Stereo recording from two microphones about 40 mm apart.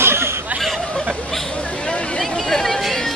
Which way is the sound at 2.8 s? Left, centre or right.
Centre.